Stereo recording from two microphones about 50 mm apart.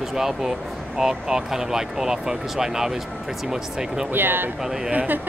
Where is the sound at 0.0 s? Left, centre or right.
Centre.